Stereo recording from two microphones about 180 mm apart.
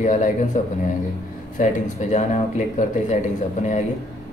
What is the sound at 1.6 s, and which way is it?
Speech, 40° left (ahead or behind).